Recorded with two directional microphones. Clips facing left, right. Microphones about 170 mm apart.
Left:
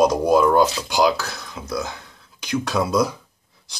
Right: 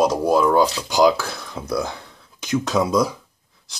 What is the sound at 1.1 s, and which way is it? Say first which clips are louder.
Speech: right 2 dB; 30° right (ahead or behind).